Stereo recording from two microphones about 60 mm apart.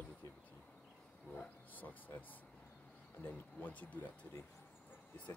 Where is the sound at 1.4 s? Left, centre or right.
Left.